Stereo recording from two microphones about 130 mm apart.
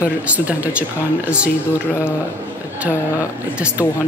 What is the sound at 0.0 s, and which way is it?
Speech, 10° right (ahead or behind).